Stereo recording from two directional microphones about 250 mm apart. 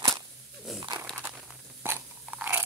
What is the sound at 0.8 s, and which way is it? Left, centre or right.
Dog, centre.